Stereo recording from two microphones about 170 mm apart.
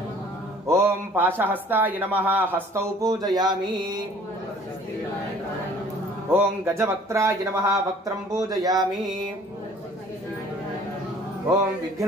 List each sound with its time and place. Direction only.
0.7 s a man's voice: 15° right (ahead or behind)
3.3 s mantra: 25° right (ahead or behind)
6.3 s a man's voice: 15° right (ahead or behind)